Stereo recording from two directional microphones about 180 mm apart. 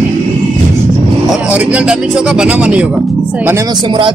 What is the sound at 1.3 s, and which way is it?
Speech, 5° right (ahead or behind).